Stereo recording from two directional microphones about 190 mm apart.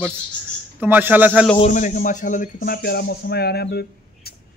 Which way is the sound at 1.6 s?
40° left (ahead or behind).